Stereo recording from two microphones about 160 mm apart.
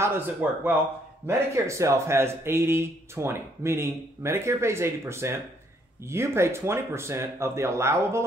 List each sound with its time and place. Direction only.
0.0 s speech: 15° right (ahead or behind)